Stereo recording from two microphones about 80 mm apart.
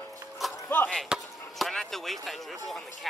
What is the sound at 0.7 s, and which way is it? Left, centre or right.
Chop, left.